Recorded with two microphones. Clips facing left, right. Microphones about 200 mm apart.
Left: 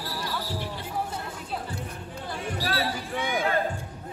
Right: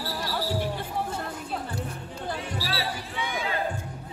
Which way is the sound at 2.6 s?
50° left (ahead or behind).